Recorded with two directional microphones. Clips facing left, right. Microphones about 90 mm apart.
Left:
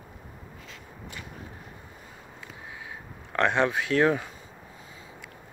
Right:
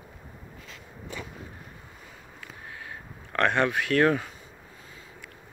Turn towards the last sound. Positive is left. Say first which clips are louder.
# right 1 dB
turn(degrees=20)  # may be behind; listen again after turning